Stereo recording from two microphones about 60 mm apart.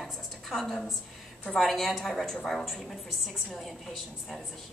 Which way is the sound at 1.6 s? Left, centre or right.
Centre.